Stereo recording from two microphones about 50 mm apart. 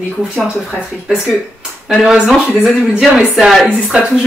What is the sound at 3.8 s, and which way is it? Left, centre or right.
Speech, centre.